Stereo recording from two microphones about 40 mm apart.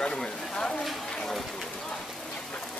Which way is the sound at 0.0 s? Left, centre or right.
Left.